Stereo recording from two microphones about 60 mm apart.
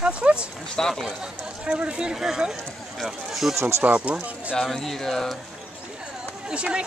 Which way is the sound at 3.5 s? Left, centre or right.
Right.